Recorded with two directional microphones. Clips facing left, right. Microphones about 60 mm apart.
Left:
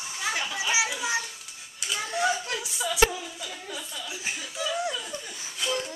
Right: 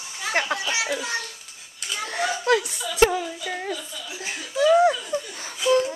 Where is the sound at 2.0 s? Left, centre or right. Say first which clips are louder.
Even; right.